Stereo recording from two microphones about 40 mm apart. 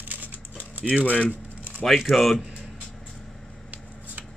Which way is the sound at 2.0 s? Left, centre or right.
Centre.